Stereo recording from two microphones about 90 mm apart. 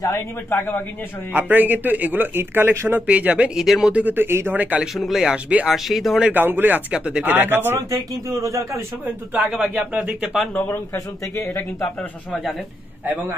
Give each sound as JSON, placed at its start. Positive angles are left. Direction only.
{"t": 0.5, "sound": "a man's voice", "side_deg": 25}
{"t": 1.3, "sound": "a man's voice", "side_deg": -20}
{"t": 3.9, "sound": "a man's voice", "side_deg": -20}
{"t": 4.9, "sound": "speech", "side_deg": 0}
{"t": 5.7, "sound": "speech", "side_deg": 0}
{"t": 6.3, "sound": "a man's voice", "side_deg": -20}
{"t": 7.9, "sound": "speech", "side_deg": -35}
{"t": 9.4, "sound": "speech", "side_deg": -10}
{"t": 10.7, "sound": "a man's voice", "side_deg": 30}
{"t": 11.5, "sound": "speech", "side_deg": 5}